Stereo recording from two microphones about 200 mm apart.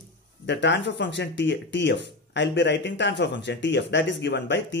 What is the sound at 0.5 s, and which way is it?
Speech, 60° left (ahead or behind).